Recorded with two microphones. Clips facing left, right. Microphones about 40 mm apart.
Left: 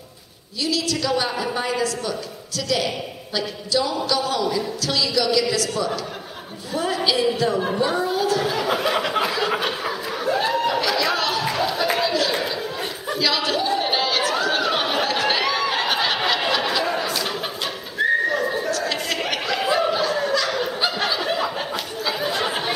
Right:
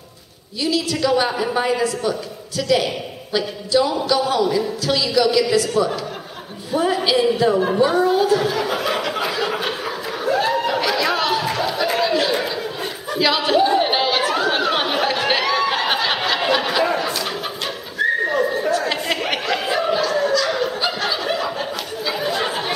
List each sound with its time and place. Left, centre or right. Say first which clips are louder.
0.7 s speech: right 4 dB; centre
8.7 s a sound: even; centre
10.8 s chatter: right 2 dB; centre
13.2 s chatter: right 6 dB; centre
15.4 s a sound: right 3 dB; centre
16.2 s chatter: right 2 dB; centre
18.0 s neigh: right 1 dB; centre
18.6 s chatter: right 4 dB; centre
19.5 s snicker: even; centre
20.6 s a sound: right 1 dB; centre